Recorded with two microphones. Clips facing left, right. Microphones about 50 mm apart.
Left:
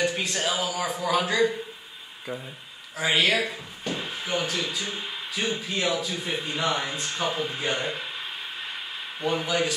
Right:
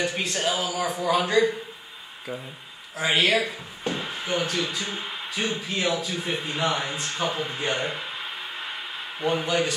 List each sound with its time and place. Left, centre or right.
0.2 s speech: centre
3.0 s speech: centre
3.8 s a sound: centre
4.3 s speech: centre
5.4 s speech: centre
9.2 s speech: centre